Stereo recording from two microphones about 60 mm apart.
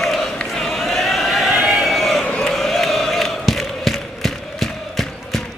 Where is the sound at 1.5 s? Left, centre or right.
Centre.